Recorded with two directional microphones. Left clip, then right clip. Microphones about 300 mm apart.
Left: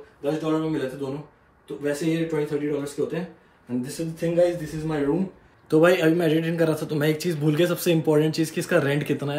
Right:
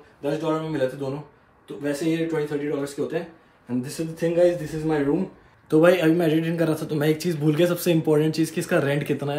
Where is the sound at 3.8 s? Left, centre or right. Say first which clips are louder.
Right 2 dB; centre.